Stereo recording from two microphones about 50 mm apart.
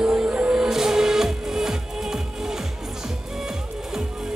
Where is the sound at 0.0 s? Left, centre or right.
Centre.